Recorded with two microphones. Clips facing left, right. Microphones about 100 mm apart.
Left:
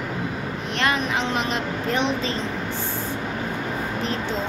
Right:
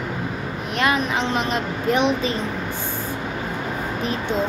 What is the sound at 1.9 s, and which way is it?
Speech, 15° right (ahead or behind).